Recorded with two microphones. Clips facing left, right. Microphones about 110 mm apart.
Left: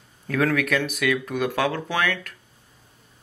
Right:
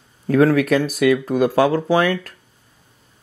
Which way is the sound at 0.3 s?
30° right (ahead or behind).